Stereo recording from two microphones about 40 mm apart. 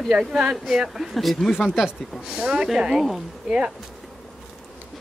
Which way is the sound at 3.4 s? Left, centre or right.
Right.